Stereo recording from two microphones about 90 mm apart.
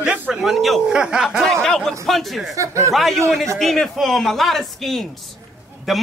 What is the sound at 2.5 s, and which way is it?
Speech, 35° right (ahead or behind).